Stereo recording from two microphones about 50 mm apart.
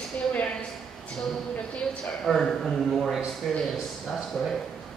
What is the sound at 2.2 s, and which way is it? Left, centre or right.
A man's voice, centre.